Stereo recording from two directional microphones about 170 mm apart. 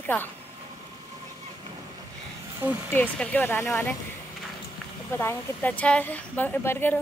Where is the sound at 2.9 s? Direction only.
10° left (ahead or behind).